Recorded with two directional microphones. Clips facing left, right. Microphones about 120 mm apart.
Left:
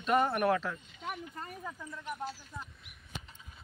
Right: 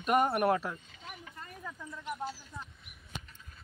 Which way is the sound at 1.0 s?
50° left (ahead or behind).